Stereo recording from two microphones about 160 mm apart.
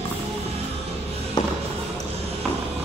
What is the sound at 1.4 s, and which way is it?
Music, 25° left (ahead or behind).